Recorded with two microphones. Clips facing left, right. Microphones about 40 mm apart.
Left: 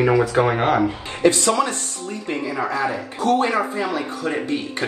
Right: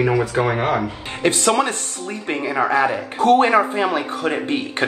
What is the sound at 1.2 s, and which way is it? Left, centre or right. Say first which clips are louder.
Speech: even; right.